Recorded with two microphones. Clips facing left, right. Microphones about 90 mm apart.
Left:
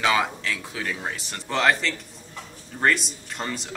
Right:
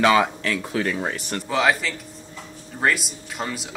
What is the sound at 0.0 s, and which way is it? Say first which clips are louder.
Speech: right 5 dB; 55° right (ahead or behind).